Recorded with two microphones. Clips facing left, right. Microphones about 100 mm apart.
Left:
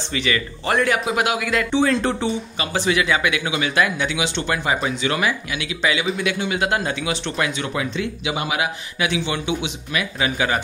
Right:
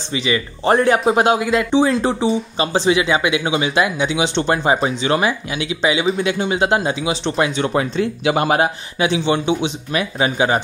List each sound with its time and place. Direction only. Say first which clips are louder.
0.1 s speech: right 3 dB; 20° right (ahead or behind)
0.7 s speech: right 6 dB; 30° right (ahead or behind)
6.0 s speech: right 4 dB; 35° right (ahead or behind)
9.0 s speech: right 6 dB; 30° right (ahead or behind)